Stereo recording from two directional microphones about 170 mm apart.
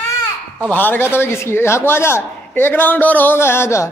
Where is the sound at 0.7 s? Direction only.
10° left (ahead or behind).